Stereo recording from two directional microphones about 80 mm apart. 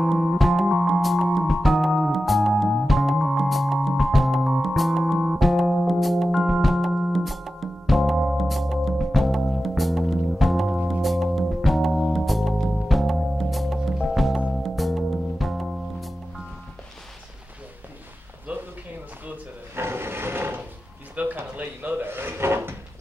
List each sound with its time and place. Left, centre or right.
0.0 s music: centre
18.5 s a sound: centre
19.2 s drawer open or close: right